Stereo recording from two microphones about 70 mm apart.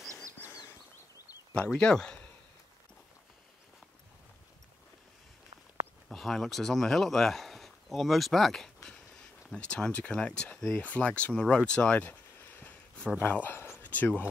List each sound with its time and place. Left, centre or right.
1.5 s speech: centre
6.0 s speech: centre
8.8 s a sound: centre
9.6 s speech: centre
12.1 s a sound: left
13.9 s speech: left